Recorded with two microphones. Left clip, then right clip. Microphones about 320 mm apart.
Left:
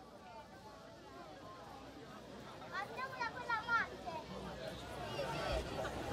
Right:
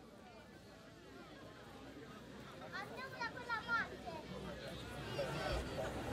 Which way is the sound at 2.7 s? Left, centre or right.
Centre.